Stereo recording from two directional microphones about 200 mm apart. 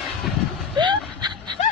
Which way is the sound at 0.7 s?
25° right (ahead or behind).